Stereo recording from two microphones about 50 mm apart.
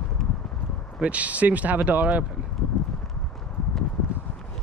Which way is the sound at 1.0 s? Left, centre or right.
Right.